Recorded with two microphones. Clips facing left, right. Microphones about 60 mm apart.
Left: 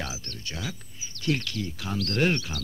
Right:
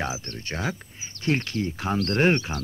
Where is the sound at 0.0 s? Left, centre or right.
Right.